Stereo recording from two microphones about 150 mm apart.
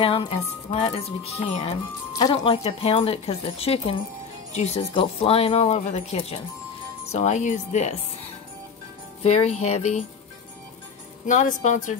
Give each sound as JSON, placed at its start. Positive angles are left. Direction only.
{"t": 0.0, "sound": "speech", "side_deg": 35}
{"t": 9.2, "sound": "speech", "side_deg": 45}
{"t": 11.2, "sound": "speech", "side_deg": 55}